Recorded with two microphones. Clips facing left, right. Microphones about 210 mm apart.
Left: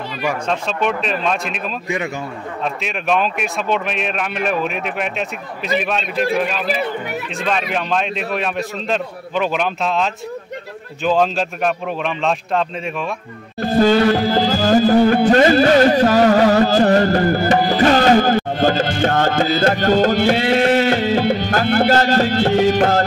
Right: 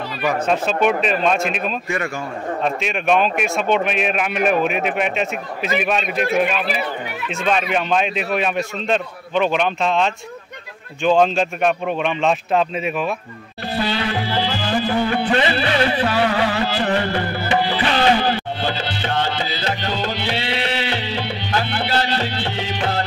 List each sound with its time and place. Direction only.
1.0 s a man's voice: centre (ahead or behind)
7.4 s a man's voice: centre (ahead or behind)
13.6 s music: 45° left (ahead or behind)